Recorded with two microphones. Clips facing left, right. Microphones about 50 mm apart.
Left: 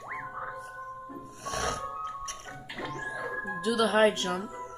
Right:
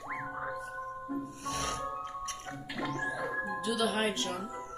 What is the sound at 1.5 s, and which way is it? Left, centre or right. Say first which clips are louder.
Music: left 4 dB; left.